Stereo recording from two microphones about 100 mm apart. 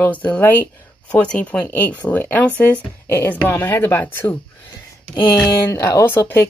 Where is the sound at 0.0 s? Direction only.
15° left (ahead or behind).